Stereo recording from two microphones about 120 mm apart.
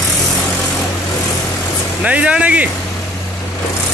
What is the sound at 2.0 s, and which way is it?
Speech, 10° right (ahead or behind).